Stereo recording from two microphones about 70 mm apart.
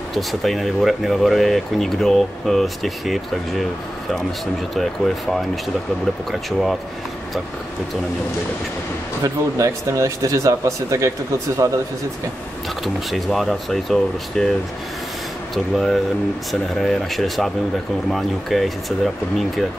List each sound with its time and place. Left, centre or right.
0.1 s speech: centre
4.7 s speech: centre
9.2 s speech: right
12.8 s speech: centre
15.5 s speech: centre